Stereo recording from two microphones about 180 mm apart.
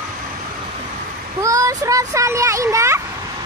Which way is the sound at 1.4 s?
20° right (ahead or behind).